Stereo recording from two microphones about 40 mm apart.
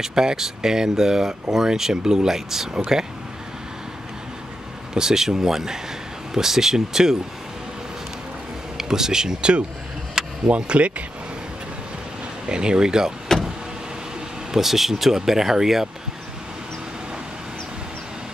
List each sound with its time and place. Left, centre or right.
0.0 s speech: centre
4.9 s speech: centre
8.7 s speech: centre
10.2 s a sound: centre
10.5 s speech: right
12.4 s speech: right
14.5 s speech: centre